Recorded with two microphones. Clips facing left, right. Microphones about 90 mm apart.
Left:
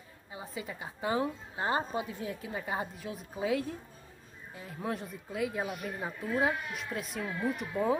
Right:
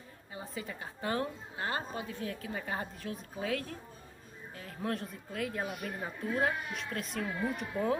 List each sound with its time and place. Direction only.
0.3 s speech: 10° left (ahead or behind)